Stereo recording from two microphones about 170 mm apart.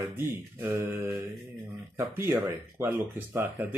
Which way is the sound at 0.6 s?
15° right (ahead or behind).